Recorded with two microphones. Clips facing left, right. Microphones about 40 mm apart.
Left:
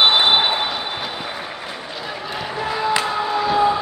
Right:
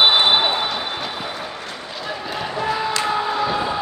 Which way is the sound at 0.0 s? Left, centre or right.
Centre.